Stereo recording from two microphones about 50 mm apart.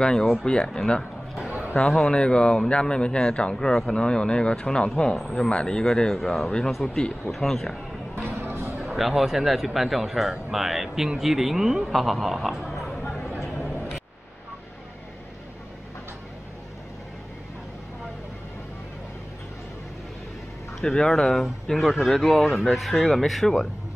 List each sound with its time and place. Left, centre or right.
0.0 s speech: centre
8.4 s music: right
8.9 s speech: centre
20.8 s speech: centre